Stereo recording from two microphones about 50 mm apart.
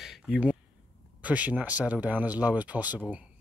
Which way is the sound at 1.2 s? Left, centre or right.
Right.